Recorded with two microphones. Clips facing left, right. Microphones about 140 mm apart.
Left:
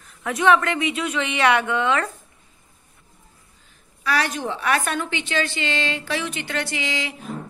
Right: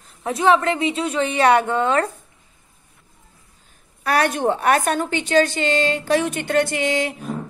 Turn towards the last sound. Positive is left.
turn(degrees=-50)  # may be behind; listen again after turning